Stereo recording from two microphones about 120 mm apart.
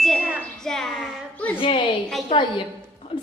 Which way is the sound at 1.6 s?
45° left (ahead or behind).